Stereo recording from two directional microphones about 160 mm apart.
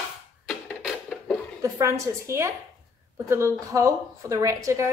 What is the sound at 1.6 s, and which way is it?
A woman's voice, 20° right (ahead or behind).